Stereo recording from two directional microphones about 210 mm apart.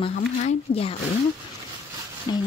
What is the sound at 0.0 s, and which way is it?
Speech, 30° left (ahead or behind).